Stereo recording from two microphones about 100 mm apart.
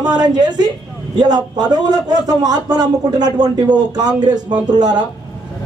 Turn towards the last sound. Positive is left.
turn(degrees=-45)  # may be behind; listen again after turning